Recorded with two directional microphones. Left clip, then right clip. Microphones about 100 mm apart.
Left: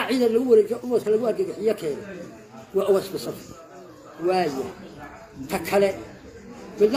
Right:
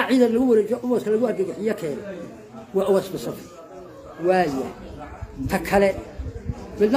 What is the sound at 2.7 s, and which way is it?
Speech, 15° right (ahead or behind).